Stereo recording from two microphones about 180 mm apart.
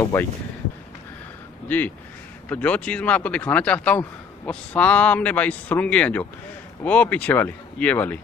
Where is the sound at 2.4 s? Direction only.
10° left (ahead or behind).